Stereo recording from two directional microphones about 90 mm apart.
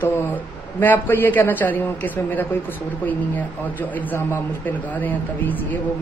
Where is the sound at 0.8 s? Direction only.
20° left (ahead or behind).